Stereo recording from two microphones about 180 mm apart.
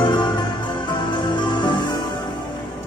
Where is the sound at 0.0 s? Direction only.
25° left (ahead or behind).